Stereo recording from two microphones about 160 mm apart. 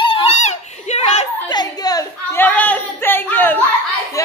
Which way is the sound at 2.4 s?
10° left (ahead or behind).